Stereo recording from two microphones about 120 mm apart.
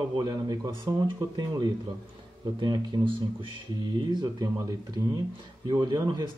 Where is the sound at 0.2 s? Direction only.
35° right (ahead or behind).